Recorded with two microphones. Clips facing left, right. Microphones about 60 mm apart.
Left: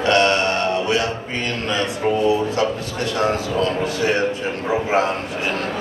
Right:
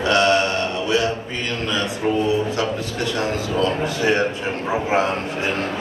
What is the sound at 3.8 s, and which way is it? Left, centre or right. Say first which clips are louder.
Speech: even; right.